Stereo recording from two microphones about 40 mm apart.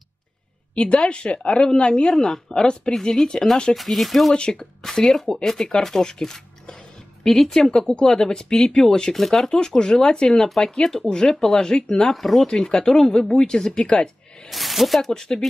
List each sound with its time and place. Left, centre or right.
0.7 s a woman's voice: left
2.0 s speech: centre
2.5 s a woman's voice: left
3.7 s speech: centre
4.3 s a woman's voice: centre
9.1 s speech: centre
9.5 s a woman's voice: centre
10.5 s speech: centre
12.4 s speech: centre
14.5 s speech: centre
15.0 s speech: centre